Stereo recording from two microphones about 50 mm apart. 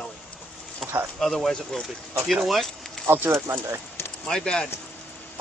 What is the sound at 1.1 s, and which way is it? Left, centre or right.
Speech, centre.